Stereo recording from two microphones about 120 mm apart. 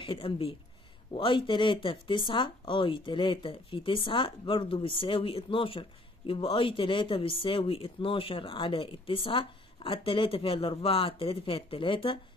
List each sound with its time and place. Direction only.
0.0 s speech: 50° left (ahead or behind)